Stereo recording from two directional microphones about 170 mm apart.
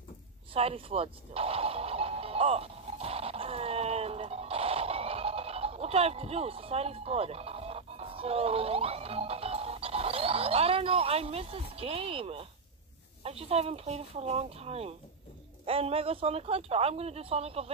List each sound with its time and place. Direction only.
0.5 s music: 35° right (ahead or behind)
13.2 s speech: 35° right (ahead or behind)